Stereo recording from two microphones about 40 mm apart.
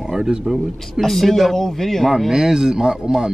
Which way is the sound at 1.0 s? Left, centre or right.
Centre.